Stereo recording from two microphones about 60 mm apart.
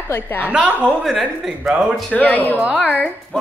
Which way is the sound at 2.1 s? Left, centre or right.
Left.